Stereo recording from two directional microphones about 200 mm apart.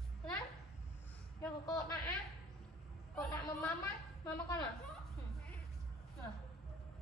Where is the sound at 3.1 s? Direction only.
15° left (ahead or behind).